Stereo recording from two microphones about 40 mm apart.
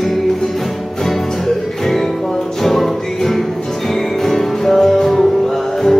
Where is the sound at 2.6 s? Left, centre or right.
Centre.